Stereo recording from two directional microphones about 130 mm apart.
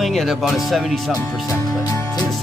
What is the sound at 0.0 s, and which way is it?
Speech, centre (ahead or behind).